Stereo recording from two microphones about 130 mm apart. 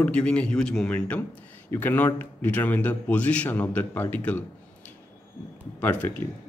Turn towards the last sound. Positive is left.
turn(degrees=15)  # may be behind; listen again after turning